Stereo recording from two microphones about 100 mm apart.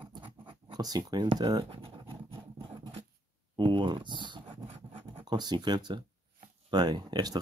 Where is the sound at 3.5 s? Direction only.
55° right (ahead or behind).